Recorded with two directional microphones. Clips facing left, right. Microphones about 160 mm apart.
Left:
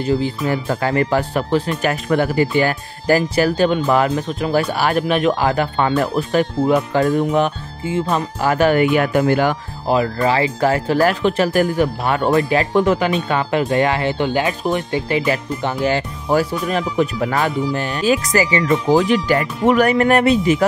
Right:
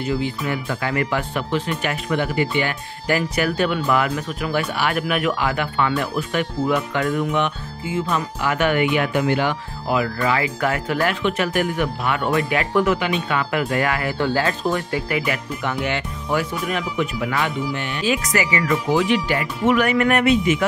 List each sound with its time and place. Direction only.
0.0 s speech: 35° left (ahead or behind)